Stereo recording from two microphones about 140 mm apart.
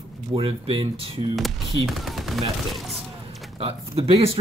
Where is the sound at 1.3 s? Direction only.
Centre (ahead or behind).